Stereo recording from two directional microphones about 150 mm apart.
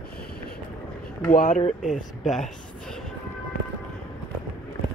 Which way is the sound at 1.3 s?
70° left (ahead or behind).